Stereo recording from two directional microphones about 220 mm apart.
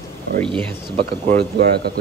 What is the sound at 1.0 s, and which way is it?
Speech, 45° right (ahead or behind).